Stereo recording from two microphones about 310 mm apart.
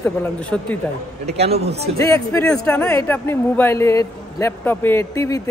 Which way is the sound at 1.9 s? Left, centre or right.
Centre.